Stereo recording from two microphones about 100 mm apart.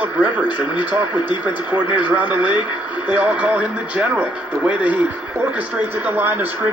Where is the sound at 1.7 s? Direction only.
20° right (ahead or behind).